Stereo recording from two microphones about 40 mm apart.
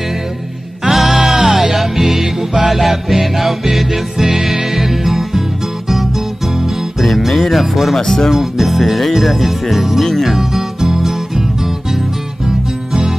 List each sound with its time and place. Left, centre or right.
0.8 s music: centre
7.0 s music: centre
8.0 s speech: centre
8.3 s music: centre